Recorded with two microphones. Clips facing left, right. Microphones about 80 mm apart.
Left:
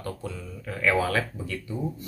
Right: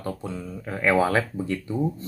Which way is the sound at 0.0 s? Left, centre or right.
Right.